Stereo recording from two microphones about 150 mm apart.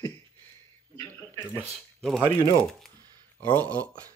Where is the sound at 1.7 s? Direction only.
Centre (ahead or behind).